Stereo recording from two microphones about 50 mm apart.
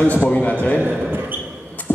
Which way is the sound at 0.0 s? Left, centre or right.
Left.